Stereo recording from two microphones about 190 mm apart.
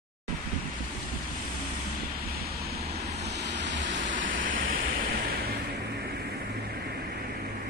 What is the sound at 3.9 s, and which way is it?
Vehicle, 40° right (ahead or behind).